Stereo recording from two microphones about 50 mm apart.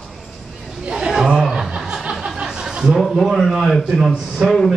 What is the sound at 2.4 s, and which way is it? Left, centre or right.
Chuckle, centre.